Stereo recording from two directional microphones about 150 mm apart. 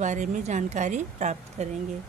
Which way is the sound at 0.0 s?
55° right (ahead or behind).